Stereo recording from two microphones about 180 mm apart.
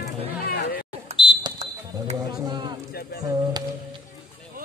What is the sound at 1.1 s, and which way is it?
Fire alarm, 25° left (ahead or behind).